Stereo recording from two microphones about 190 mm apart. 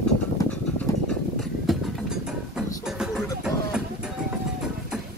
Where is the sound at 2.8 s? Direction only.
5° right (ahead or behind).